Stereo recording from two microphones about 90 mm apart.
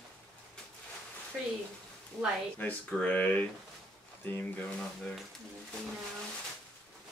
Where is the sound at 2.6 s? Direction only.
15° left (ahead or behind).